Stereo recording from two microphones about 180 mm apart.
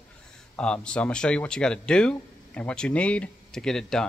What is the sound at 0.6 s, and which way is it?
Speech, 5° left (ahead or behind).